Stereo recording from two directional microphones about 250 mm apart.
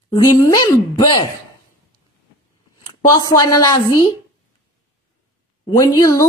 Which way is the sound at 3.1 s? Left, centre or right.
Centre.